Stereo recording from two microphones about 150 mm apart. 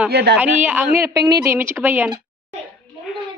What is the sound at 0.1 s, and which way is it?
Speech, 90° right.